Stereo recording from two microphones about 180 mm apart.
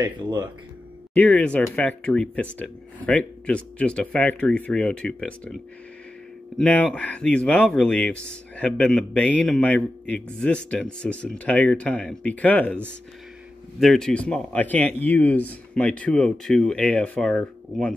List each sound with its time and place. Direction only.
0.0 s speech: 20° right (ahead or behind)
1.1 s speech: 10° left (ahead or behind)
6.6 s speech: 5° left (ahead or behind)
13.7 s speech: centre (ahead or behind)